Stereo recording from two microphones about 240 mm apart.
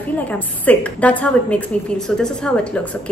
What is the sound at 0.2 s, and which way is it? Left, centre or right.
A woman's voice, centre.